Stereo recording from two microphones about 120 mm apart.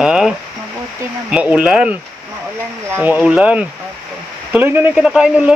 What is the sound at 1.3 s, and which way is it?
Speech, 10° right (ahead or behind).